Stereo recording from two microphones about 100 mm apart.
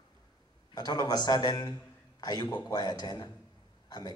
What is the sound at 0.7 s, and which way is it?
A man's voice, 40° left (ahead or behind).